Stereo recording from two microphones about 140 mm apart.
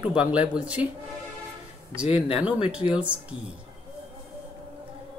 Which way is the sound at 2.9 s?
10° right (ahead or behind).